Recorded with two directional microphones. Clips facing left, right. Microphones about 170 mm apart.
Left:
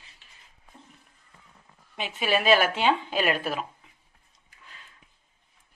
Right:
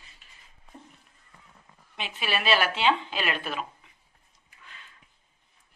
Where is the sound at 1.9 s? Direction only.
45° left (ahead or behind).